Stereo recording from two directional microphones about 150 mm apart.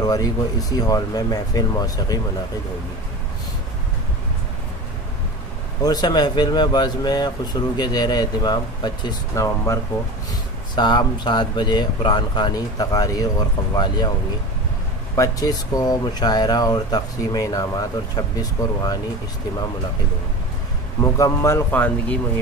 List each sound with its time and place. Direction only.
0.0 s speech: 25° left (ahead or behind)
5.8 s speech: 25° left (ahead or behind)
15.1 s speech: 25° left (ahead or behind)
21.0 s speech: 20° left (ahead or behind)